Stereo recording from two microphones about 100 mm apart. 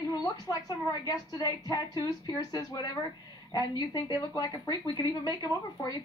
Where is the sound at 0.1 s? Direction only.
40° left (ahead or behind).